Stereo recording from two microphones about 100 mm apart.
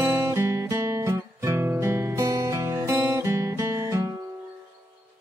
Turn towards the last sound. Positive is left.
turn(degrees=-30)  # may be behind; listen again after turning